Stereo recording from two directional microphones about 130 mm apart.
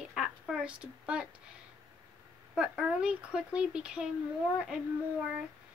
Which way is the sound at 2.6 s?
5° right (ahead or behind).